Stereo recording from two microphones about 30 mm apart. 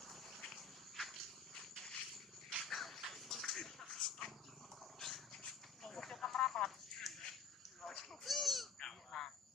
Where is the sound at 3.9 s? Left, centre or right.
Centre.